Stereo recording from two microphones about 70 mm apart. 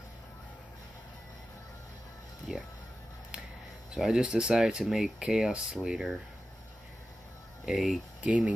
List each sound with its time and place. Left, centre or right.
3.9 s speech: centre
7.6 s speech: centre
8.2 s speech: right